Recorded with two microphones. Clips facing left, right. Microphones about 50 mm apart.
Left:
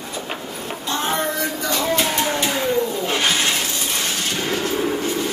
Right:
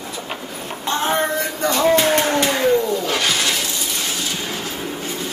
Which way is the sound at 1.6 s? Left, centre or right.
Right.